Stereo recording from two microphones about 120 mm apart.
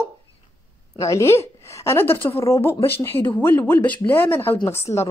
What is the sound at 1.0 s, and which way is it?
A woman's voice, 25° left (ahead or behind).